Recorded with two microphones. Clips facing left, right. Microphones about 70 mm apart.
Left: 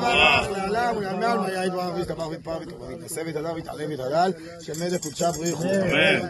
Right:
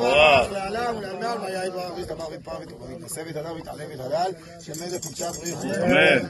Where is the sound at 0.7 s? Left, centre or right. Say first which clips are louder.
Left 3 dB; left.